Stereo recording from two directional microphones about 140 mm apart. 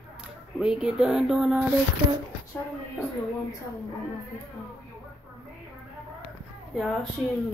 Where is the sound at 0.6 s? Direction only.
5° right (ahead or behind).